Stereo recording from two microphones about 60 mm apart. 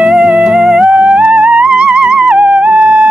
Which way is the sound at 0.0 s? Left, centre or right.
Centre.